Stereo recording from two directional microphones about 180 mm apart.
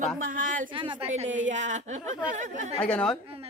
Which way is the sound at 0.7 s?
30° right (ahead or behind).